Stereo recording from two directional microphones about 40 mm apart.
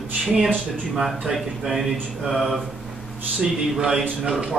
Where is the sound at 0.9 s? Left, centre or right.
Centre.